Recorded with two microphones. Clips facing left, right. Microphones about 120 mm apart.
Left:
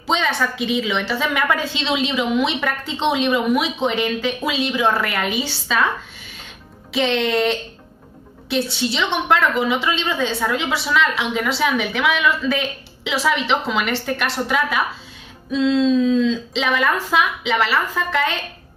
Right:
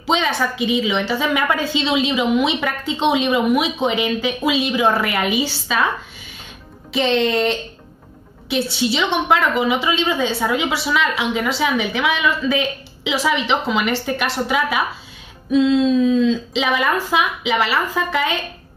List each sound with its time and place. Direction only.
0.0 s a woman's voice: 5° right (ahead or behind)
6.9 s a woman's voice: centre (ahead or behind)